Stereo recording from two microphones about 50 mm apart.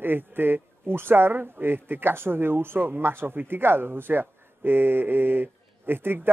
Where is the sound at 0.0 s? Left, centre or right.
Right.